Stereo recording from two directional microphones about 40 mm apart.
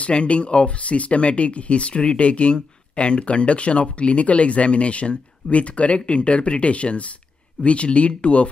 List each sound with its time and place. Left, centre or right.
0.0 s speech: left